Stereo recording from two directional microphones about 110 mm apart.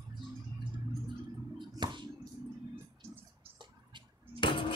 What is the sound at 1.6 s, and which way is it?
Finger snapping, 45° right (ahead or behind).